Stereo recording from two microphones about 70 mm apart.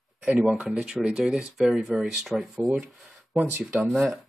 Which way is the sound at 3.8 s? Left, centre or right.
Centre.